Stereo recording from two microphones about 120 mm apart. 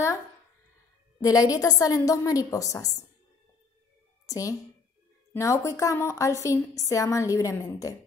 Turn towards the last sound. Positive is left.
turn(degrees=25)  # may be behind; listen again after turning